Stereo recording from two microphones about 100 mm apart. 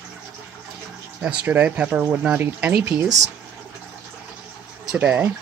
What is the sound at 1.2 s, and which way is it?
Speech, 15° right (ahead or behind).